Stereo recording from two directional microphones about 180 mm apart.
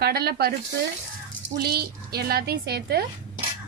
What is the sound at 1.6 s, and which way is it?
A woman's voice, 60° right (ahead or behind).